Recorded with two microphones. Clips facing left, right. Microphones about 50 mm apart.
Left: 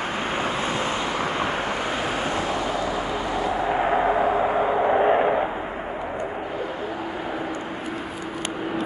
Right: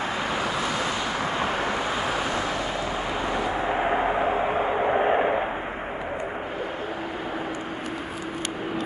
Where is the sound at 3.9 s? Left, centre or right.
Centre.